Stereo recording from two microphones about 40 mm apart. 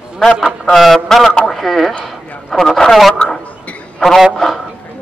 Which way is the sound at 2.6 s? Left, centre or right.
Centre.